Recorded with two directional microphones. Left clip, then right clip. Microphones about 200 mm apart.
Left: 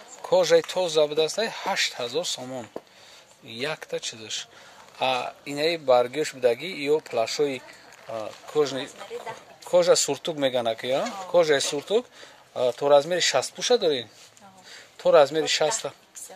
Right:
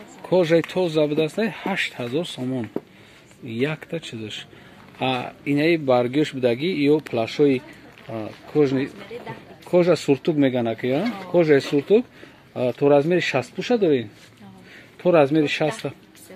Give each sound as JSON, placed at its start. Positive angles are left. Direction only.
{"t": 0.3, "sound": "speech", "side_deg": 15}
{"t": 15.0, "sound": "speech", "side_deg": 10}